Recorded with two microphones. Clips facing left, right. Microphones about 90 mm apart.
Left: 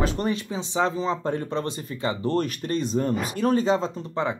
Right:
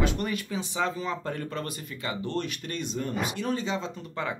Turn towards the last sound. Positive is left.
turn(degrees=25)  # may be behind; listen again after turning